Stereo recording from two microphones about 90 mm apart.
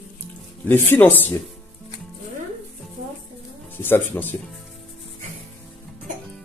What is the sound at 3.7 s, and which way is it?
Speech, 25° left (ahead or behind).